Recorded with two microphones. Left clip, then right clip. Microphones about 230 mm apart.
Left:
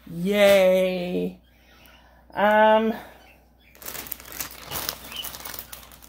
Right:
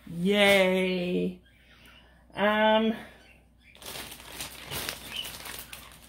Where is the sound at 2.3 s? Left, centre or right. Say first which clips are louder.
Left 6 dB; centre.